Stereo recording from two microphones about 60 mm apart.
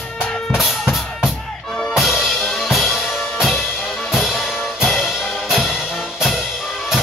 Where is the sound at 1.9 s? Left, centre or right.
Centre.